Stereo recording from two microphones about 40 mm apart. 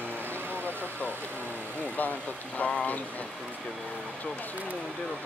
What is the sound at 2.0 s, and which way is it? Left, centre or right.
Vehicle, left.